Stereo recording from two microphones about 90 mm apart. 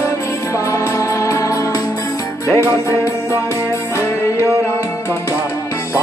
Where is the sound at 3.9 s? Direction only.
30° left (ahead or behind).